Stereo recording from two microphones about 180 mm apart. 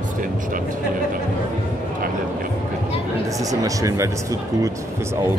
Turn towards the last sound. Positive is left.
turn(degrees=-20)  # may be behind; listen again after turning